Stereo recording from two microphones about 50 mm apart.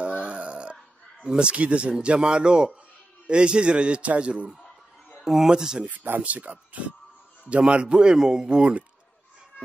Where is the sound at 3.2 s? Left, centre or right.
Centre.